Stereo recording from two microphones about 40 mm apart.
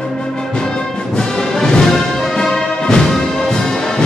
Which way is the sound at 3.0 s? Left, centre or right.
Centre.